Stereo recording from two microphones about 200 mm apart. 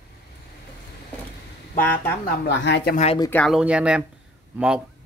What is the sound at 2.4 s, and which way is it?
Speech, 60° left (ahead or behind).